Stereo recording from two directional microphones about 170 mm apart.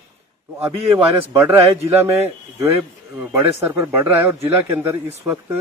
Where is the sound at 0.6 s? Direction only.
10° right (ahead or behind).